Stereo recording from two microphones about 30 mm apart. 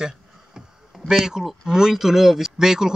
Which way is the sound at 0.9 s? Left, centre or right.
Centre.